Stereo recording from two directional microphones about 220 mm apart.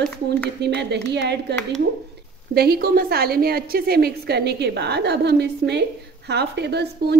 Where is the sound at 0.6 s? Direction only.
50° right (ahead or behind).